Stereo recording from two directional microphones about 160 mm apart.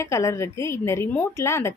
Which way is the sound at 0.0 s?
20° left (ahead or behind).